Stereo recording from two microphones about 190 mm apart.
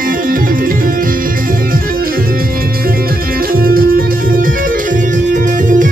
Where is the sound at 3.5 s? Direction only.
50° right (ahead or behind).